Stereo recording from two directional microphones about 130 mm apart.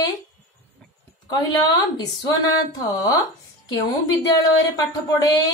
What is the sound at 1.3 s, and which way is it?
A woman's voice, 30° left (ahead or behind).